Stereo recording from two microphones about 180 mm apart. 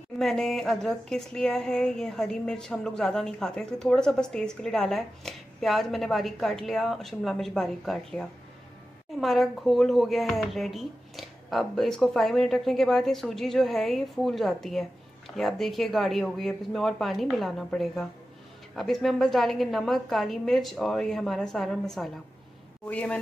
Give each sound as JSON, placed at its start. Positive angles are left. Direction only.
{"t": 0.2, "sound": "a woman's voice", "side_deg": 0}